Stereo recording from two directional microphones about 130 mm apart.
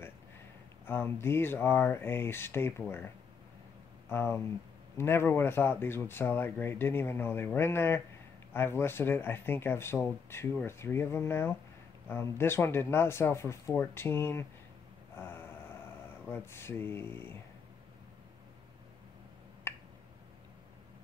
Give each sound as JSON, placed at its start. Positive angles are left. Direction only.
{"t": 0.8, "sound": "speech", "side_deg": 15}
{"t": 4.1, "sound": "speech", "side_deg": 20}
{"t": 15.1, "sound": "a sound", "side_deg": 15}
{"t": 16.0, "sound": "speech", "side_deg": 15}
{"t": 19.7, "sound": "finger snapping", "side_deg": 15}